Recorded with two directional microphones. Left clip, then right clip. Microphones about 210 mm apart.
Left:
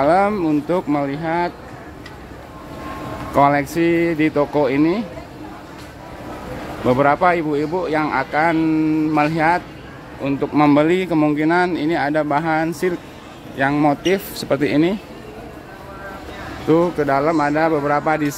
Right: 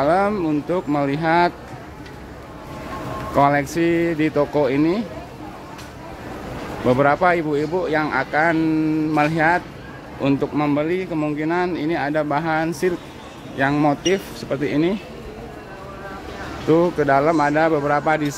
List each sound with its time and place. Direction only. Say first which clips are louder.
0.0 s speech: left 3 dB; 10° left (ahead or behind)
3.3 s speech: left 2 dB; 10° left (ahead or behind)
6.9 s speech: left 1 dB; 5° left (ahead or behind)
10.5 s speech: left 6 dB; 20° left (ahead or behind)
16.6 s a man's voice: even; 5° left (ahead or behind)